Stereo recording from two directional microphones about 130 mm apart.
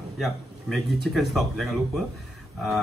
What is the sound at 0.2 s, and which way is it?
A man's voice, centre (ahead or behind).